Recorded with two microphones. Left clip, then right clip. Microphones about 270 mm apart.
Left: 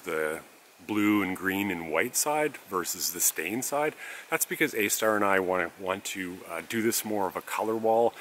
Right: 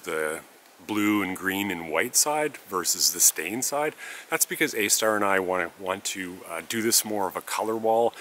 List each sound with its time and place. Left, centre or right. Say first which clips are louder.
0.0 s speech: right 2 dB; centre
7.6 s speech: right 1 dB; centre